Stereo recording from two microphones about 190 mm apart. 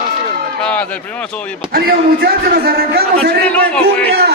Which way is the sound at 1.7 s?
55° right (ahead or behind).